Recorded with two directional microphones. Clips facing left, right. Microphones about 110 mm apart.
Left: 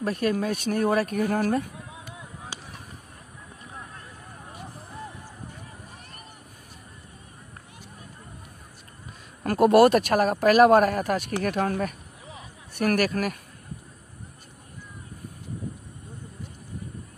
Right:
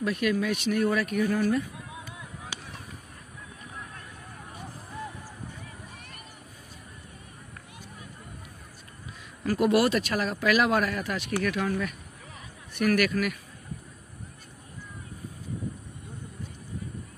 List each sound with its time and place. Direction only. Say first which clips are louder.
0.0 s speech: left 1 dB; 40° left (ahead or behind)
9.4 s speech: left 6 dB; 45° left (ahead or behind)
12.7 s speech: left 1 dB; 40° left (ahead or behind)